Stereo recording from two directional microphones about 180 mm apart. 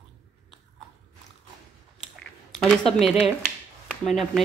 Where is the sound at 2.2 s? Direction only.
Centre (ahead or behind).